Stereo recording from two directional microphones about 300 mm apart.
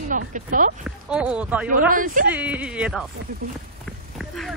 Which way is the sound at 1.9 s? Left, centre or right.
Right.